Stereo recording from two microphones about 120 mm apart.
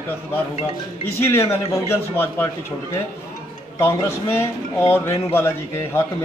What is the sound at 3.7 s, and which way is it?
Speech, 20° left (ahead or behind).